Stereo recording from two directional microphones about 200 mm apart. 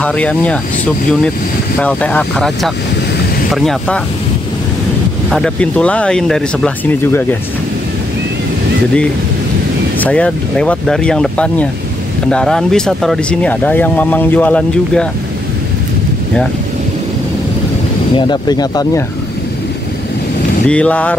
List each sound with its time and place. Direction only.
0.0 s speech: 5° left (ahead or behind)
1.8 s speech: 5° left (ahead or behind)
5.3 s speech: 5° left (ahead or behind)
9.9 s speech: 5° left (ahead or behind)
18.1 s speech: 20° left (ahead or behind)
20.6 s speech: 5° left (ahead or behind)